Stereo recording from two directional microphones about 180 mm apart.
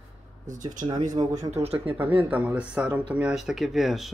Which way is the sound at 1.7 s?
10° right (ahead or behind).